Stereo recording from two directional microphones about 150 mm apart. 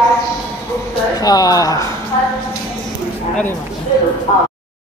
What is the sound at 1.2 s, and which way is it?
Speech, 25° left (ahead or behind).